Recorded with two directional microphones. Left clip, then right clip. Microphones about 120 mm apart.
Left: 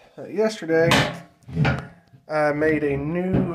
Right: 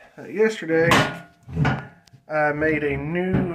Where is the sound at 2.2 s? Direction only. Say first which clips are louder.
Even; 40° left (ahead or behind).